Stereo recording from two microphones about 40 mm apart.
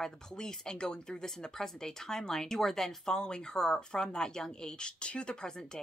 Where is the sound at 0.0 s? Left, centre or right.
Centre.